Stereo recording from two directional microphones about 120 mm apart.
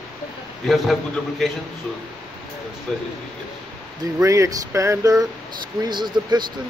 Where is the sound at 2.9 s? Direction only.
Centre (ahead or behind).